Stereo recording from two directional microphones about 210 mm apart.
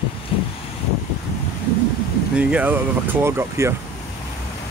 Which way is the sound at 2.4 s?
5° right (ahead or behind).